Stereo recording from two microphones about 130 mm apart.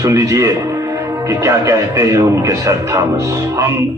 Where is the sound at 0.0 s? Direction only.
20° right (ahead or behind).